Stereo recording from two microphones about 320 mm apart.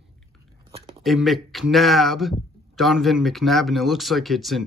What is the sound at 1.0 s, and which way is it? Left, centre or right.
Speech, centre.